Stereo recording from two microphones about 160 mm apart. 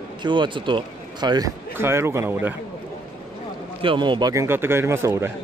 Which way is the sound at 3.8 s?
30° right (ahead or behind).